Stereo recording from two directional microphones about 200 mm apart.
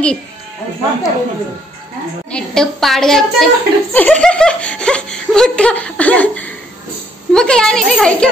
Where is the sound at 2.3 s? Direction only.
5° left (ahead or behind).